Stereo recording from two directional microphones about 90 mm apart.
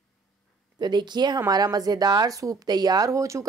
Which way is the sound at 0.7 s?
55° right (ahead or behind).